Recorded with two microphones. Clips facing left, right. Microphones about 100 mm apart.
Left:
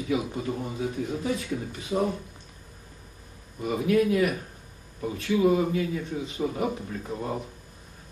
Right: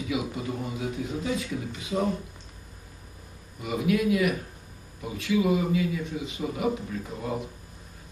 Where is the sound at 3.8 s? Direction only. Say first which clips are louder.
Left 1 dB; 35° left (ahead or behind).